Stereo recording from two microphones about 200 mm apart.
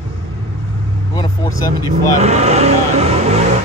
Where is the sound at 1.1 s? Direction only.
20° left (ahead or behind).